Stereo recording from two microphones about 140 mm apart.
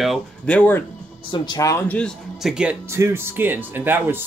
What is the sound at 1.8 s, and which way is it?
Speech, 10° left (ahead or behind).